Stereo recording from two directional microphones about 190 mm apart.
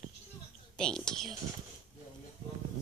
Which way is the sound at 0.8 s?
5° left (ahead or behind).